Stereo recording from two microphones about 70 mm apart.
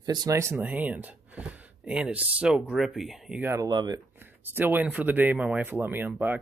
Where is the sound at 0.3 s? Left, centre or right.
Right.